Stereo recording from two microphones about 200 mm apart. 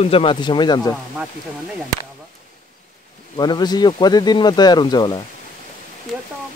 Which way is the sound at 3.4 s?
20° left (ahead or behind).